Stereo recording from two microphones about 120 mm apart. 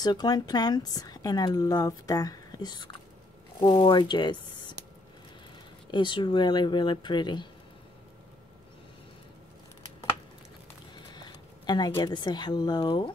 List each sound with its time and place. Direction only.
0.0 s speech: 35° left (ahead or behind)
5.9 s speech: 40° left (ahead or behind)
11.1 s a sound: 35° left (ahead or behind)
11.9 s speech: 35° left (ahead or behind)